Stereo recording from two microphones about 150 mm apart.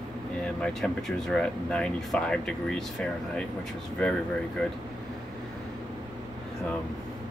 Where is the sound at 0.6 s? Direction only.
5° left (ahead or behind).